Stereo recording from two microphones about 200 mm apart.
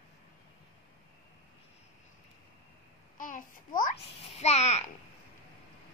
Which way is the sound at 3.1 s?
40° left (ahead or behind).